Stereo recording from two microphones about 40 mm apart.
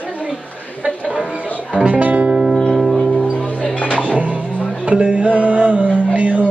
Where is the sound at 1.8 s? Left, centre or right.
Right.